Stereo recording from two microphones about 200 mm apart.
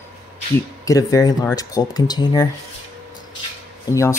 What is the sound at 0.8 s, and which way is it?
Speech, 15° left (ahead or behind).